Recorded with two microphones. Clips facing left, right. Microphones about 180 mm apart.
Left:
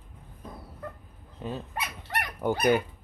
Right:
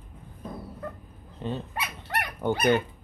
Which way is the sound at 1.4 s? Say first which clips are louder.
Right 2 dB; 5° left (ahead or behind).